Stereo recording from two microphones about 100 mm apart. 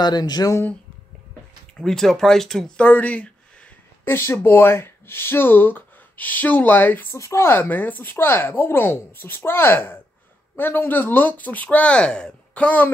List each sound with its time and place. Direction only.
0.0 s speech: 45° left (ahead or behind)
1.8 s speech: 5° left (ahead or behind)
2.9 s speech: 15° left (ahead or behind)
4.0 s speech: 25° left (ahead or behind)
7.2 s speech: 30° left (ahead or behind)